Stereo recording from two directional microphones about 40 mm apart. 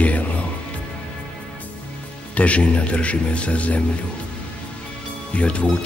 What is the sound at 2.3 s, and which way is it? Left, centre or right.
Speech, left.